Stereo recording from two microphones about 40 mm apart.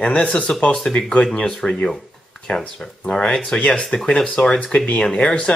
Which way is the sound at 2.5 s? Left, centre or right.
Left.